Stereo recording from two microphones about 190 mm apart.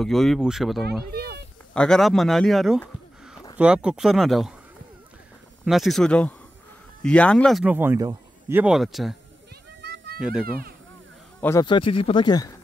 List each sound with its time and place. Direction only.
0.0 s speech: centre (ahead or behind)
5.7 s speech: centre (ahead or behind)
7.6 s speech: 10° right (ahead or behind)
10.2 s speech: 5° right (ahead or behind)
11.6 s speech: 25° left (ahead or behind)